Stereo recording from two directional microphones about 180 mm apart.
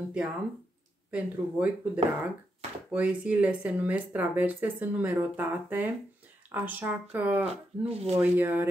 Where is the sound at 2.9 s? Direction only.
10° right (ahead or behind).